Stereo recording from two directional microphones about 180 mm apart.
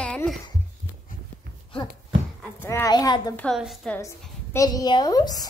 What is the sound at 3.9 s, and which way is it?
A woman's voice, 15° left (ahead or behind).